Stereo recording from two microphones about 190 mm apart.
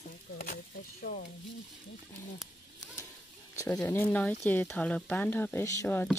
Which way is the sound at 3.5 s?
15° left (ahead or behind).